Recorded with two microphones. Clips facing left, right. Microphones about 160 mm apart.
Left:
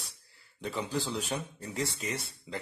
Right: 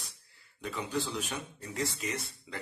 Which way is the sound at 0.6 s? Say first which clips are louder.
Left 1 dB; 30° left (ahead or behind).